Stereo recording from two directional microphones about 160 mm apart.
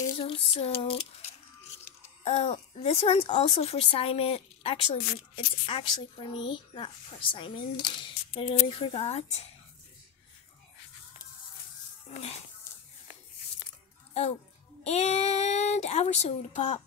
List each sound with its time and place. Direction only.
0.2 s speech: 35° left (ahead or behind)
12.1 s speech: 40° left (ahead or behind)
12.7 s a sound: 15° left (ahead or behind)
14.8 s speech: 45° left (ahead or behind)